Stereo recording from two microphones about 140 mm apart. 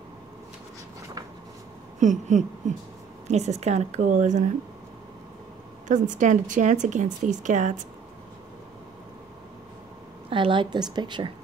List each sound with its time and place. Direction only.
2.0 s a woman's voice: 60° right (ahead or behind)
5.9 s speech: 60° right (ahead or behind)
10.3 s a woman's voice: 35° right (ahead or behind)